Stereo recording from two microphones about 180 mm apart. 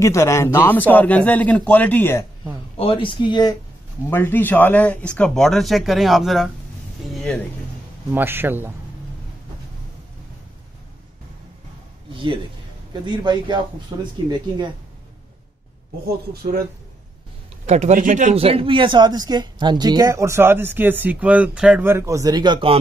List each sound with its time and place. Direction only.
0.0 s a man's voice: 15° left (ahead or behind)
2.8 s speech: 30° left (ahead or behind)
4.1 s speech: 10° left (ahead or behind)
8.1 s a man's voice: 10° right (ahead or behind)
13.0 s speech: 25° right (ahead or behind)
17.6 s speech: 40° right (ahead or behind)